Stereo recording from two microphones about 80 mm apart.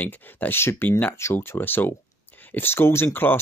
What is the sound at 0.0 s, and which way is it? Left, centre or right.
Speech, left.